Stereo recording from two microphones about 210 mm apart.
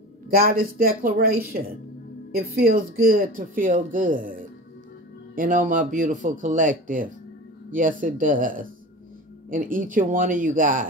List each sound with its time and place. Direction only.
0.3 s speech: 45° right (ahead or behind)